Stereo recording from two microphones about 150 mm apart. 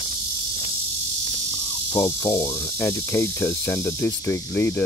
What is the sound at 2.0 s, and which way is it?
Speech, 20° left (ahead or behind).